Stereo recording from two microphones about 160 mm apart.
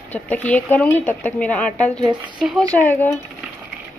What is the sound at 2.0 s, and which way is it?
Speech, 30° right (ahead or behind).